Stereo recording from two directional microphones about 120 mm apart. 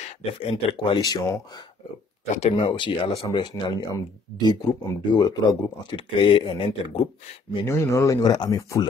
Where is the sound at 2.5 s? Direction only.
45° left (ahead or behind).